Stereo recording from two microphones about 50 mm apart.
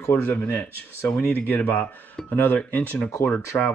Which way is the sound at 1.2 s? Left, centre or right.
Left.